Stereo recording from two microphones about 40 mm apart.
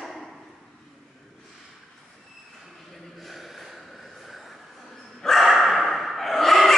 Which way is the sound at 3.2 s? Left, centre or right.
Centre.